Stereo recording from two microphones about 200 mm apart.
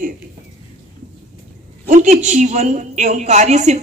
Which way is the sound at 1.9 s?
35° right (ahead or behind).